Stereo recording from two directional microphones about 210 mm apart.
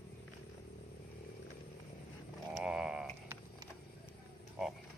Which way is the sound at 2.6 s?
5° right (ahead or behind).